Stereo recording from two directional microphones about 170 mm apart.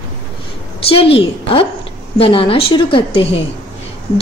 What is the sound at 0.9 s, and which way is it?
A woman's voice, 35° left (ahead or behind).